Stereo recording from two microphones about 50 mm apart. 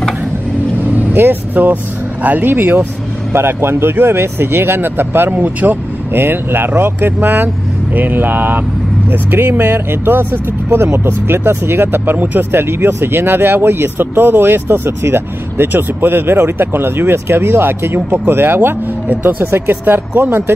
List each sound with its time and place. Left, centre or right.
0.8 s vehicle: right
1.1 s speech: right
5.4 s speech: right
6.1 s speech: right